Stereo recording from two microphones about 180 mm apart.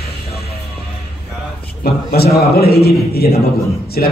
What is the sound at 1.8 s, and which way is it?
A man's voice, 60° left (ahead or behind).